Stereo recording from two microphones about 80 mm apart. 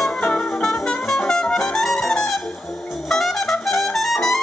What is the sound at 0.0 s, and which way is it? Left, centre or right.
Music, centre.